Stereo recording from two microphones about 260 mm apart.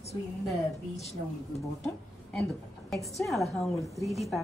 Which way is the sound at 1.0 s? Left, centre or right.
Left.